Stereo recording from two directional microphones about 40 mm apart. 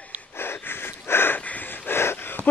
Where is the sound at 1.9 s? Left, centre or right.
Left.